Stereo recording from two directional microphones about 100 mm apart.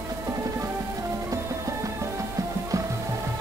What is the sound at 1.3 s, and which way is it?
Music, 30° right (ahead or behind).